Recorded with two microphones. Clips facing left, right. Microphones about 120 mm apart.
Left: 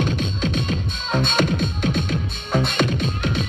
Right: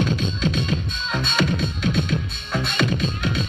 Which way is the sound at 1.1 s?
45° left (ahead or behind).